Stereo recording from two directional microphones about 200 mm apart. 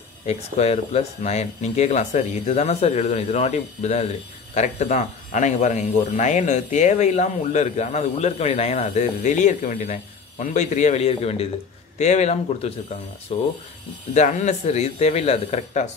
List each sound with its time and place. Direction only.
0.3 s speech: 30° left (ahead or behind)
14.1 s speech: 35° left (ahead or behind)